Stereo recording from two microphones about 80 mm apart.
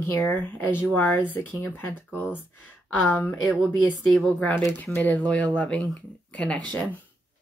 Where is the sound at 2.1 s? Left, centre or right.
Centre.